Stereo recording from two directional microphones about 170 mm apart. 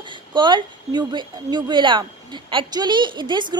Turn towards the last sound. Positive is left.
turn(degrees=-25)  # may be behind; listen again after turning